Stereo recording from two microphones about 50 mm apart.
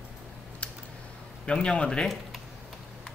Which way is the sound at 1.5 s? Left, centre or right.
Centre.